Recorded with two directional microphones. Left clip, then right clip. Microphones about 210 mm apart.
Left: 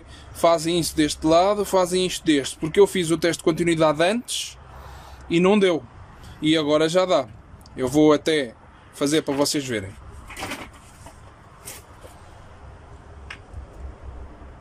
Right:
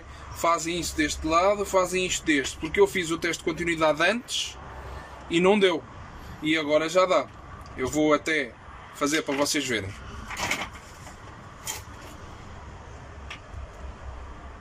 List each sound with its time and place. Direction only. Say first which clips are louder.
0.4 s speech: left 6 dB; 20° left (ahead or behind)